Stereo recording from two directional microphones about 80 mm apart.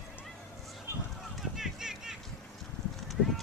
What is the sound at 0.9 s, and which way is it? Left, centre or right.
Fowl, right.